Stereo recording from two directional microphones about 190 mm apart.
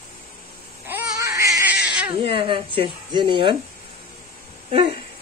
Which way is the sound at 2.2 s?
25° right (ahead or behind).